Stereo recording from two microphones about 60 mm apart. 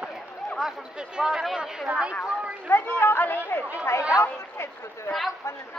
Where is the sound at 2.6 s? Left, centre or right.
Left.